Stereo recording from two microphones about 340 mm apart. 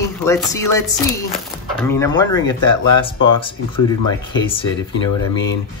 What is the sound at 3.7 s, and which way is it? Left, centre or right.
Chopping, centre.